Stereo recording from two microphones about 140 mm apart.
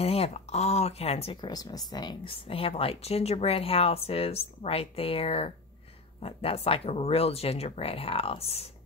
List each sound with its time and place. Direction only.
0.0 s speech: 45° left (ahead or behind)
1.3 s speech: 30° left (ahead or behind)
2.3 s speech: 40° left (ahead or behind)